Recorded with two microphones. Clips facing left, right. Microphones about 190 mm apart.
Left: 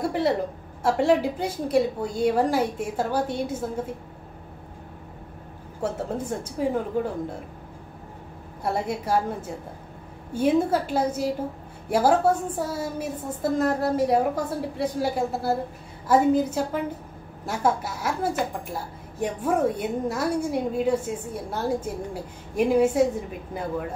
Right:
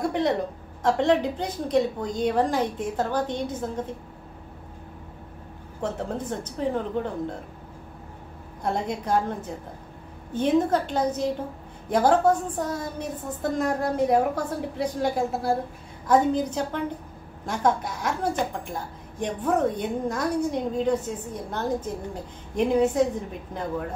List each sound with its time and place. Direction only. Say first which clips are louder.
0.0 s a woman's voice: even; 5° left (ahead or behind)
5.8 s a woman's voice: left 1 dB; 10° left (ahead or behind)
8.6 s a woman's voice: left 1 dB; 5° left (ahead or behind)